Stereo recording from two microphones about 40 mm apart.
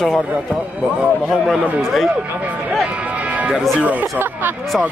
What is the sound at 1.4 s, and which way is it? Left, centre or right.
Speech, centre.